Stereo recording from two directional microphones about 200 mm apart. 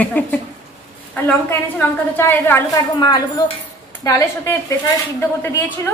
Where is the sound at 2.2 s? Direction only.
10° left (ahead or behind).